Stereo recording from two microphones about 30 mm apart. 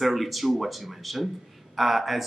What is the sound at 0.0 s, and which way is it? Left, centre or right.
Speech, centre.